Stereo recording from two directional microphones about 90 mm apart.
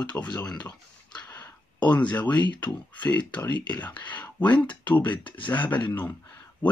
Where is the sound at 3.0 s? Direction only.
15° left (ahead or behind).